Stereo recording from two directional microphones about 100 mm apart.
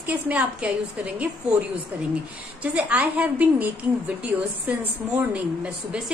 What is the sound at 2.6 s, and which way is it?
A woman's voice, 15° right (ahead or behind).